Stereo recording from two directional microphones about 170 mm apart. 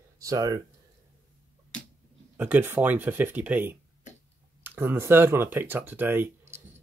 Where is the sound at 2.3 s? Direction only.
10° right (ahead or behind).